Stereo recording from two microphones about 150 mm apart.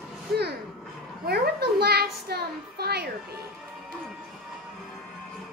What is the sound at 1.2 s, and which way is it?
A child's voice, 90° right.